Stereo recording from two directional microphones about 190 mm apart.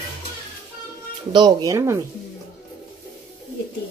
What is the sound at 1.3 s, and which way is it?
Speech, 20° right (ahead or behind).